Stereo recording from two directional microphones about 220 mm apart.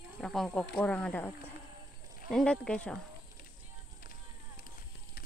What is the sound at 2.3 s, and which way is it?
Speech, 5° left (ahead or behind).